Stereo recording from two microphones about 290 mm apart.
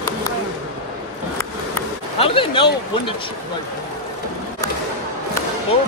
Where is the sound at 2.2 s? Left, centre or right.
Centre.